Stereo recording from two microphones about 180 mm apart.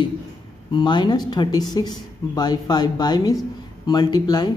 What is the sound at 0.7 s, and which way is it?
Speech, 25° left (ahead or behind).